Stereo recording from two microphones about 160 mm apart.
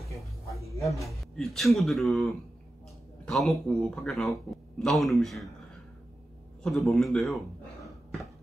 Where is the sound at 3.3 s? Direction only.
5° left (ahead or behind).